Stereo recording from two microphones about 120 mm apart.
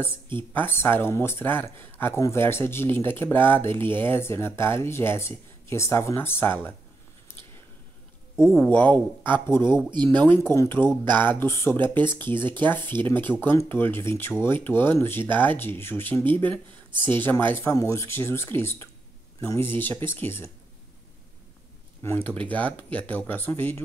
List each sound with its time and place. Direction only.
0.5 s speech: 15° left (ahead or behind)
8.4 s speech: 20° left (ahead or behind)
22.0 s speech: 15° left (ahead or behind)